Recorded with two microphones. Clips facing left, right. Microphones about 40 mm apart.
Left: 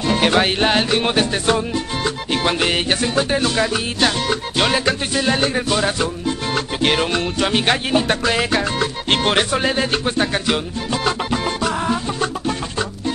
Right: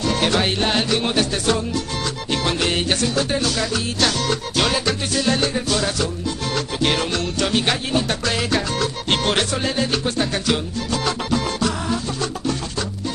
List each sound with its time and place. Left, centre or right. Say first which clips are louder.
0.0 s music: left 3 dB; left